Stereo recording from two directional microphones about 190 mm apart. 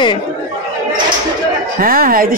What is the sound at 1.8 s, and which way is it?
Speech, 50° right (ahead or behind).